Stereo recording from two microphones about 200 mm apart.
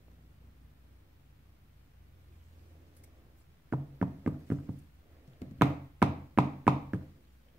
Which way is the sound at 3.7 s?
5° right (ahead or behind).